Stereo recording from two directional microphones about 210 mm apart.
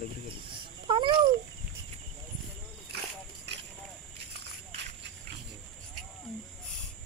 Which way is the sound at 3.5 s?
55° right (ahead or behind).